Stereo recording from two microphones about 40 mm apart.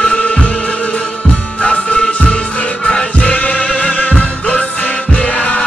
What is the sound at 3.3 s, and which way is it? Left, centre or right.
Music, left.